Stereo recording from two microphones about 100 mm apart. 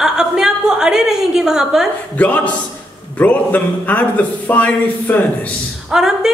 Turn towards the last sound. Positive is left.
turn(degrees=-5)  # may be behind; listen again after turning